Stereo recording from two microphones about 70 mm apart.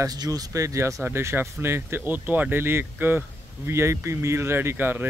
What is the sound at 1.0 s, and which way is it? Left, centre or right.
Speech, right.